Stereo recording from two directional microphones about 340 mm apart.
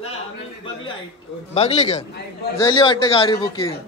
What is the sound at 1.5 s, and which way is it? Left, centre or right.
A man's voice, centre.